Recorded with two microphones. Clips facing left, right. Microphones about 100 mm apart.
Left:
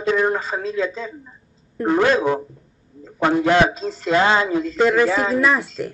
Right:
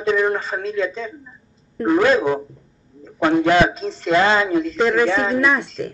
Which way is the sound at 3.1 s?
10° left (ahead or behind).